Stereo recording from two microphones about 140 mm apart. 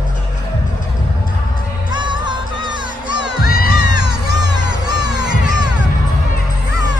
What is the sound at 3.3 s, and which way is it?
Crowd, 90° left.